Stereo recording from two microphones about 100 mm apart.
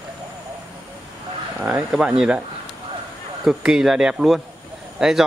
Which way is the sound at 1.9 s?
10° right (ahead or behind).